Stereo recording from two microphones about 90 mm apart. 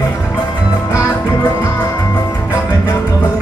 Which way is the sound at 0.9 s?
40° left (ahead or behind).